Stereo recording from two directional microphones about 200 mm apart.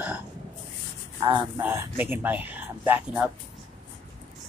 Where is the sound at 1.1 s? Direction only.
20° right (ahead or behind).